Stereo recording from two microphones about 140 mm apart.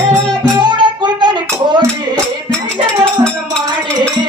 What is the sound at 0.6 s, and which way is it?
Music, 35° right (ahead or behind).